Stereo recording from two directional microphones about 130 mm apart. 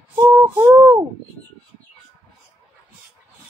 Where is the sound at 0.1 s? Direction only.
15° right (ahead or behind).